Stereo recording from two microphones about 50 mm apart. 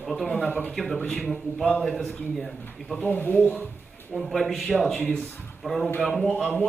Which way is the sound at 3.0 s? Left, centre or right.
Left.